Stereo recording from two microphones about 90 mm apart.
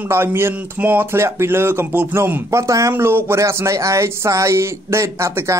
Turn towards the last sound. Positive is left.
turn(degrees=-30)  # may be behind; listen again after turning